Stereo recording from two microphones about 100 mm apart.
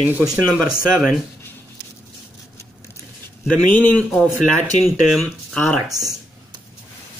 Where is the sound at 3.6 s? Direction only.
15° left (ahead or behind).